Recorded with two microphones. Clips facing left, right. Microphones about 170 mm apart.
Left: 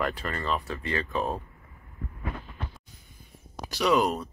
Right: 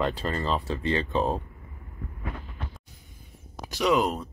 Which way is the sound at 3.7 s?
20° right (ahead or behind).